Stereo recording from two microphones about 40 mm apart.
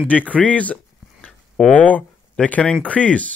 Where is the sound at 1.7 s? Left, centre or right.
Left.